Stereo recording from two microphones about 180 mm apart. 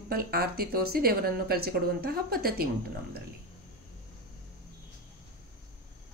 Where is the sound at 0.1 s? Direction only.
55° right (ahead or behind).